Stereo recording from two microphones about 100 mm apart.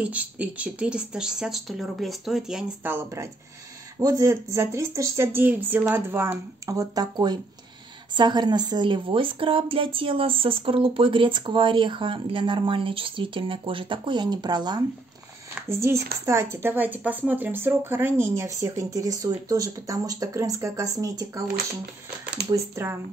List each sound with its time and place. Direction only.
0.0 s speech: 15° right (ahead or behind)
2.8 s a woman's voice: 25° right (ahead or behind); by 14.8 s 45° right (ahead or behind)
15.7 s speech: 25° right (ahead or behind)